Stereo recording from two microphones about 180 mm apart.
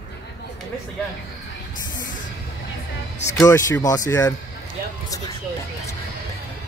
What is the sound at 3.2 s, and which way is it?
Speech, 15° left (ahead or behind).